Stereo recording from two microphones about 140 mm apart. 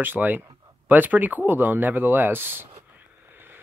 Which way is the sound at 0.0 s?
10° right (ahead or behind).